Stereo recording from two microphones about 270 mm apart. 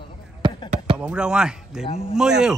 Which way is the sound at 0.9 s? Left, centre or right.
Centre.